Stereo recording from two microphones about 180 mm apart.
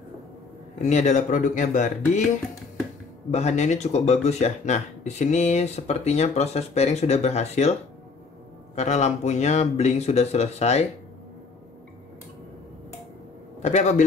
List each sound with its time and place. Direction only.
0.8 s speech: 40° left (ahead or behind)
3.3 s speech: 40° left (ahead or behind)
8.7 s speech: 40° left (ahead or behind)
13.6 s a man's voice: 40° left (ahead or behind)